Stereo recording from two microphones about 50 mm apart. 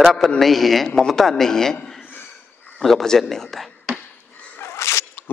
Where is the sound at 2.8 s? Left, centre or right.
Centre.